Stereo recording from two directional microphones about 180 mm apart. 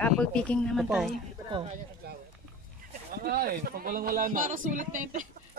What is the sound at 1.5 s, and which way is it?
Speech, 30° right (ahead or behind).